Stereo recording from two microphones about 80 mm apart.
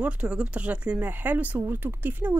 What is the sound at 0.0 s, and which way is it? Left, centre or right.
Speech, centre.